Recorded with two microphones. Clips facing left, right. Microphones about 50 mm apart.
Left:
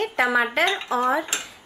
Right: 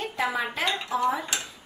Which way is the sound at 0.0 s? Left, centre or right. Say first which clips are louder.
Left 7 dB; left.